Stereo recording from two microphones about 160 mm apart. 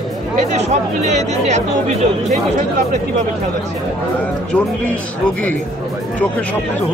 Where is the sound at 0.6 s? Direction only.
45° right (ahead or behind).